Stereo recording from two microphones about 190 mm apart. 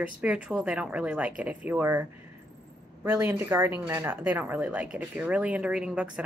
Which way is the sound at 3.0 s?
15° right (ahead or behind).